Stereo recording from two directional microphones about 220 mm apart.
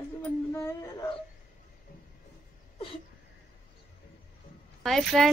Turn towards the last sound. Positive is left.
turn(degrees=0)  # may be behind; listen again after turning